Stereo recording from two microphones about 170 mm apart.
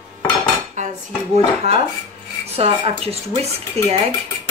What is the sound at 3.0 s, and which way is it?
Speech, 35° right (ahead or behind).